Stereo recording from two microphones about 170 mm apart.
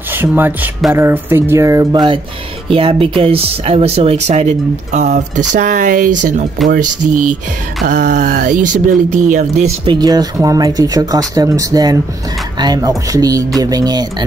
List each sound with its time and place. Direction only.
0.1 s speech: 10° right (ahead or behind); by 6.4 s 50° right (ahead or behind)
7.8 s speech: 50° right (ahead or behind)
9.8 s speech: 25° right (ahead or behind)